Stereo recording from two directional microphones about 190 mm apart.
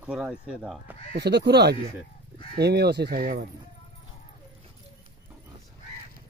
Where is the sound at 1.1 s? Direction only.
60° right (ahead or behind).